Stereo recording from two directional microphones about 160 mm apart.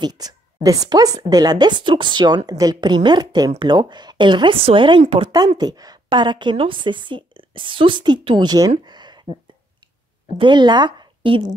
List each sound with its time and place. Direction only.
0.0 s a woman's voice: 25° right (ahead or behind)
5.6 s a woman's voice: 25° right (ahead or behind)
8.8 s a sound: 25° right (ahead or behind)
10.3 s speech: 30° right (ahead or behind)